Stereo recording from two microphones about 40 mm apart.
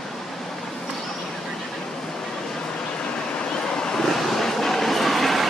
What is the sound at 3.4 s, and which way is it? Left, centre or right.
Vehicle, left.